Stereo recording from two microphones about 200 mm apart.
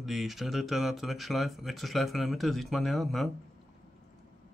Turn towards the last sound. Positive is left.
turn(degrees=0)  # may be behind; listen again after turning